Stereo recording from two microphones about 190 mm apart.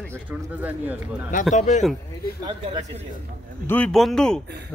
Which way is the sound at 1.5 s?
40° left (ahead or behind).